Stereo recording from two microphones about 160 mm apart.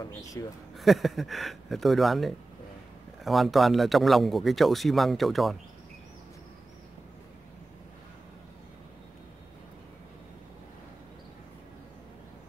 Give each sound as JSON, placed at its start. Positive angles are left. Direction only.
{"t": 0.0, "sound": "speech", "side_deg": 20}
{"t": 0.7, "sound": "speech", "side_deg": 0}